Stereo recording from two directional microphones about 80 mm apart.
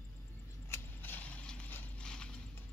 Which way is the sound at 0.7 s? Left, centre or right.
Left.